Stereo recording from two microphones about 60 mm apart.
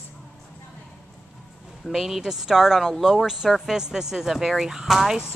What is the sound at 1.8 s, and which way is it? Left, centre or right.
Speech, centre.